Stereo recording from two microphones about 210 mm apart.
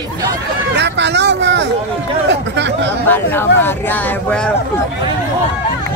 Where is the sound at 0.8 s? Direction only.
55° right (ahead or behind).